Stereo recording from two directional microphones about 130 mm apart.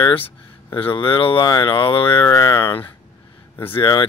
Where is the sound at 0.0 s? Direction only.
40° left (ahead or behind).